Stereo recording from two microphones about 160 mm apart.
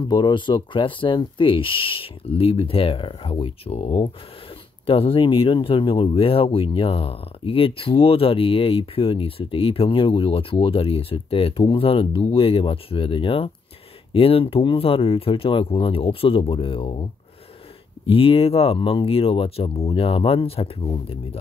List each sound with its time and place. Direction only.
0.1 s speech: 30° left (ahead or behind)